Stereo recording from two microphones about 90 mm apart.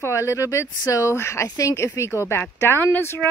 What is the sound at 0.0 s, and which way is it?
Speech, 35° left (ahead or behind).